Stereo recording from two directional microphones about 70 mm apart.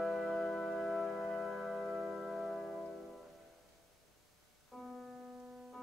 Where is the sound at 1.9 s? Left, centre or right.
Centre.